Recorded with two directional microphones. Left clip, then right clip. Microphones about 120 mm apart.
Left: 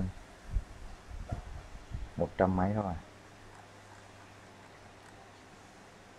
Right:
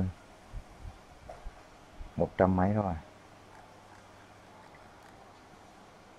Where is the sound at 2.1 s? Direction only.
25° right (ahead or behind).